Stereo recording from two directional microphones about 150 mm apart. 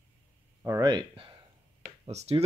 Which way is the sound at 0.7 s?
25° right (ahead or behind).